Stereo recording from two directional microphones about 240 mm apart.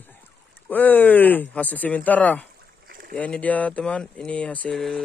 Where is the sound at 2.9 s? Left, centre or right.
Right.